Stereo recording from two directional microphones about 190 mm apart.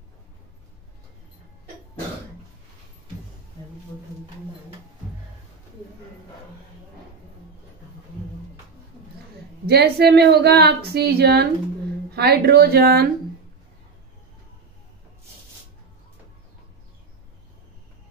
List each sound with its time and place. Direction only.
9.7 s a woman's voice: 55° right (ahead or behind)